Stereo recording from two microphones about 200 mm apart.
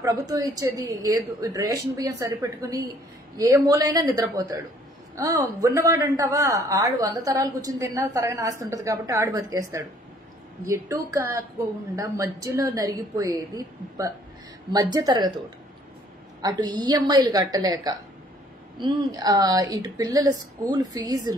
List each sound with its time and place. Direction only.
0.3 s a woman's voice: 20° right (ahead or behind)
16.3 s a woman's voice: 20° right (ahead or behind)